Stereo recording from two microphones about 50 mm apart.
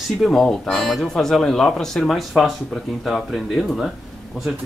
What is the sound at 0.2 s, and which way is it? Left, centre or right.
Speech, centre.